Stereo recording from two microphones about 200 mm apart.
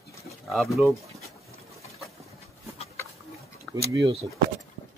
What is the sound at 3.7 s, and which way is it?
Speech, 15° right (ahead or behind).